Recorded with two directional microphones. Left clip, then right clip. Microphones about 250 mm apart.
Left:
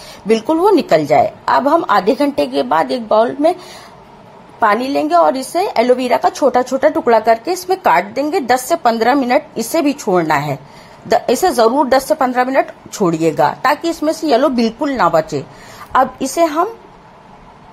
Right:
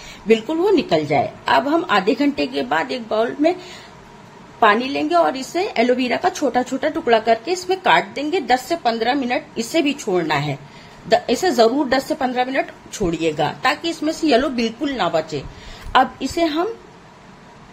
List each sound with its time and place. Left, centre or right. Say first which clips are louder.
0.3 s a woman's voice: left 4 dB; left
4.6 s a woman's voice: left 2 dB; left